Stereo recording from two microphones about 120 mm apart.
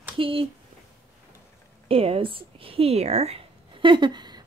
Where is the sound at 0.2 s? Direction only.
50° right (ahead or behind).